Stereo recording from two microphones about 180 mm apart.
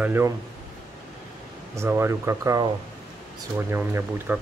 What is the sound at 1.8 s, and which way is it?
Speech, 15° right (ahead or behind).